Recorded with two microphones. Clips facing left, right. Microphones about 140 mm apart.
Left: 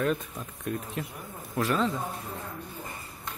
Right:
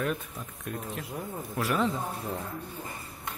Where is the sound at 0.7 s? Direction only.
Centre (ahead or behind).